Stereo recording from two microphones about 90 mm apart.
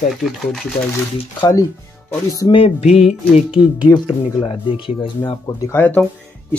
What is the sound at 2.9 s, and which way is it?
Speech, 5° right (ahead or behind).